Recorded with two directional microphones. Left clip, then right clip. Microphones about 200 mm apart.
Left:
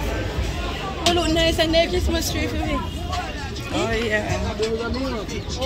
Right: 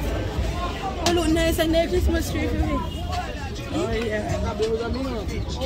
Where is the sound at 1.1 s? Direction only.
45° right (ahead or behind).